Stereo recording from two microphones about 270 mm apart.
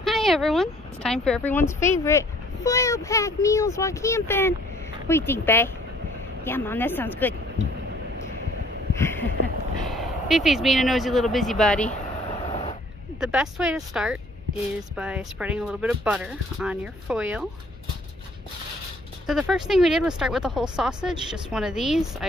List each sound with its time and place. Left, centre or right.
0.0 s speech: centre
8.9 s a sound: centre
9.8 s speech: centre
12.4 s a sound: left
13.2 s speech: centre
19.2 s speech: centre